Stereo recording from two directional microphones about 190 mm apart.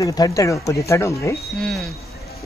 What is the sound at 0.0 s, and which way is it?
Speech, 20° left (ahead or behind).